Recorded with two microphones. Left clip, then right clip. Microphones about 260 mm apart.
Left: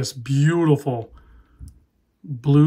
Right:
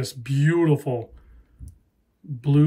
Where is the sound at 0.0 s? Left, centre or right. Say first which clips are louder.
Left 3 dB; centre.